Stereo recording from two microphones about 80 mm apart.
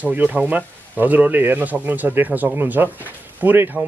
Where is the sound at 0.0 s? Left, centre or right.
Right.